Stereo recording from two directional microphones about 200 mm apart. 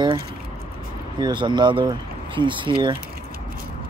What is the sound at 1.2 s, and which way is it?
Speech, 25° right (ahead or behind).